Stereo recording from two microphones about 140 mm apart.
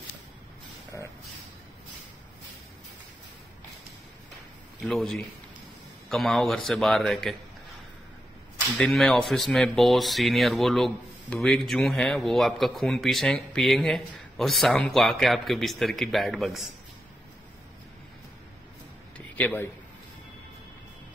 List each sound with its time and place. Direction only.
4.8 s speech: centre (ahead or behind)
8.7 s speech: 5° left (ahead or behind)
19.1 s a sound: 10° left (ahead or behind)